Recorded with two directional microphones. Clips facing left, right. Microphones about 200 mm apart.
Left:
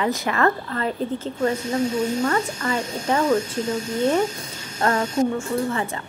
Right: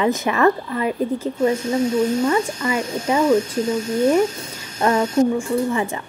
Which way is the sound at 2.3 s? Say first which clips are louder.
Right 3 dB; 15° right (ahead or behind).